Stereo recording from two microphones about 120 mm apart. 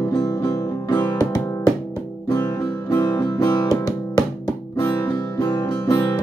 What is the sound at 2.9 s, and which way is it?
Music, 15° left (ahead or behind).